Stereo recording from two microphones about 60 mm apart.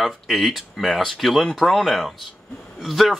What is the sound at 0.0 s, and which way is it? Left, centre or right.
Speech, centre.